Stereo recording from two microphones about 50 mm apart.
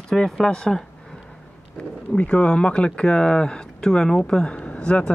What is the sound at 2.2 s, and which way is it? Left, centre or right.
Speech, left.